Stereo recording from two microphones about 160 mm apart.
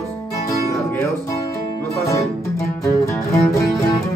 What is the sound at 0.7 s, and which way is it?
Speech, 20° left (ahead or behind).